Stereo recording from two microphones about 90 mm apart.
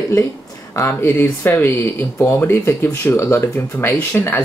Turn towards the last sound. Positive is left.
turn(degrees=25)  # may be behind; listen again after turning